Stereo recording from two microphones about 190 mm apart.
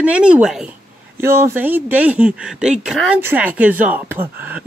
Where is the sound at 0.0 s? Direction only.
5° right (ahead or behind).